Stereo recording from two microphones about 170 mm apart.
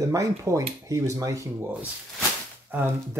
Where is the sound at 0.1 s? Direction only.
20° right (ahead or behind).